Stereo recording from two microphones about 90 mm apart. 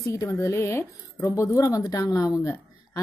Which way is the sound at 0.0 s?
35° left (ahead or behind).